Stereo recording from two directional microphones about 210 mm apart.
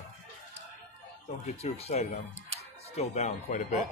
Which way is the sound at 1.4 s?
30° left (ahead or behind).